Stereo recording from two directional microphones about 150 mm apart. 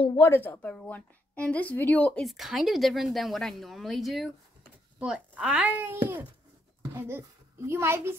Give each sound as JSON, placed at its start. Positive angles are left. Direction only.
{"t": 0.1, "sound": "a woman's voice", "side_deg": 15}
{"t": 2.2, "sound": "a woman's voice", "side_deg": 0}